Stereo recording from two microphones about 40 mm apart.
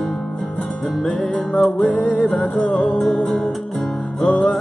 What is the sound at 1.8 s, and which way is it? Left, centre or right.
Music, left.